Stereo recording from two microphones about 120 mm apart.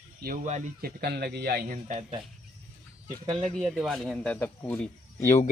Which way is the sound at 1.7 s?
90° right.